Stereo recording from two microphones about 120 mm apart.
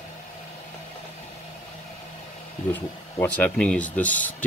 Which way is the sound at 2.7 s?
10° left (ahead or behind).